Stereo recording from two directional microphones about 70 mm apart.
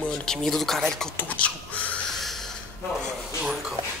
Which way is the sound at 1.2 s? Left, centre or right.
Left.